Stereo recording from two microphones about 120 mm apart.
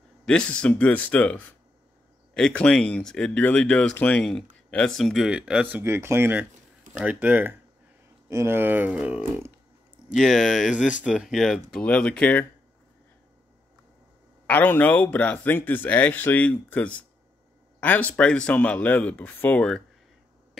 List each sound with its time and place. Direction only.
0.2 s speech: 10° left (ahead or behind); by 9.5 s 10° right (ahead or behind)
10.1 s speech: centre (ahead or behind)
14.4 s speech: 15° left (ahead or behind)